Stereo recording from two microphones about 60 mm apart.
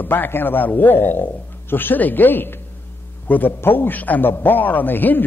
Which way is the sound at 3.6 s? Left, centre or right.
Left.